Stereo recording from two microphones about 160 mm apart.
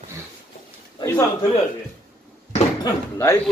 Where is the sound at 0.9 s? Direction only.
20° left (ahead or behind).